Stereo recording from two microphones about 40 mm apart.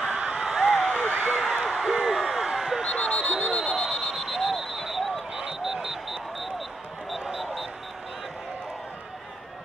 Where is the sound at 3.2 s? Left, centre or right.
Centre.